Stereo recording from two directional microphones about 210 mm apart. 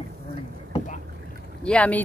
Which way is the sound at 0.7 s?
35° left (ahead or behind).